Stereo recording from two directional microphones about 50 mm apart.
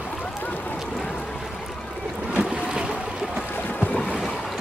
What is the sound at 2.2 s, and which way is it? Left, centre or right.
Boat, centre.